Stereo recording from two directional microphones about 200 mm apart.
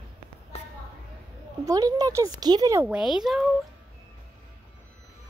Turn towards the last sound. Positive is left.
turn(degrees=0)  # may be behind; listen again after turning